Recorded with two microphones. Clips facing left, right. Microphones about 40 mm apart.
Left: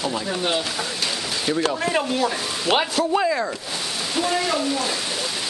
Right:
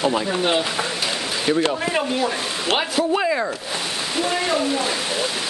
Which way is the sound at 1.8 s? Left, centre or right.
Centre.